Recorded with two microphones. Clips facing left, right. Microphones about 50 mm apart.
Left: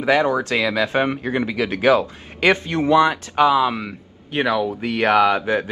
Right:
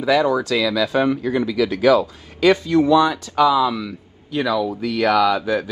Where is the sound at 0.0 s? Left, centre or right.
Left.